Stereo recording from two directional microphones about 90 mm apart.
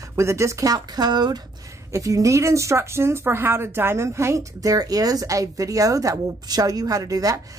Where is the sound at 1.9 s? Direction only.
35° right (ahead or behind).